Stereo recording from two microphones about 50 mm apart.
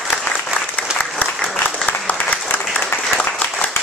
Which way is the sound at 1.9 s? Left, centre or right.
Left.